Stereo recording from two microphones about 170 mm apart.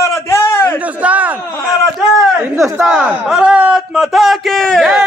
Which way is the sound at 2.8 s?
5° right (ahead or behind).